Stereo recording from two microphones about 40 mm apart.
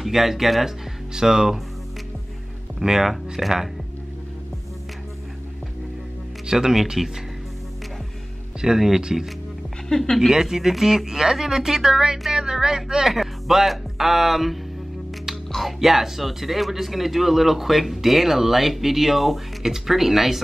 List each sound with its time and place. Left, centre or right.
0.0 s speech: centre
2.8 s speech: centre
6.4 s speech: centre
6.8 s speech: centre
8.5 s speech: centre
9.8 s a woman's voice: centre
10.3 s speech: centre